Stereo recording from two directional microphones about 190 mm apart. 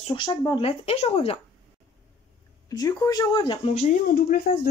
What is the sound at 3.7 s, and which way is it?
Speech, 45° left (ahead or behind).